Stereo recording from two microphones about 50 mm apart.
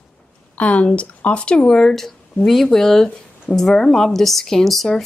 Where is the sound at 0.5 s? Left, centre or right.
Left.